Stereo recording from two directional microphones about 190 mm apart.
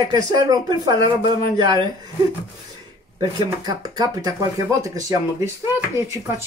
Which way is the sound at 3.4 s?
20° right (ahead or behind).